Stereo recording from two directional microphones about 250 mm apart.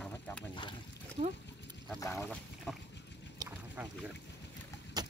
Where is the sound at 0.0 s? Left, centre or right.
Centre.